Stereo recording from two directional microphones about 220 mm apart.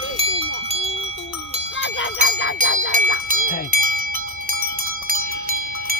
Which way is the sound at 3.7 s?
40° right (ahead or behind).